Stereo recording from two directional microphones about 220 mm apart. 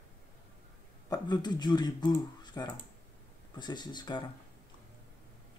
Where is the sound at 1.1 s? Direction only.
20° left (ahead or behind).